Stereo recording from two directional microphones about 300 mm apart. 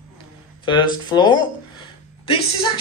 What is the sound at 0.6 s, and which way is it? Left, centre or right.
Speech, centre.